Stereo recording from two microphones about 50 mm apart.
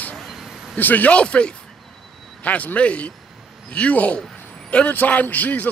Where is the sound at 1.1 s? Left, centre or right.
Left.